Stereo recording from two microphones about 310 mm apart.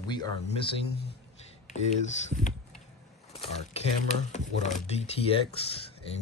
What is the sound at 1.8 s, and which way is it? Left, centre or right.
Speech, left.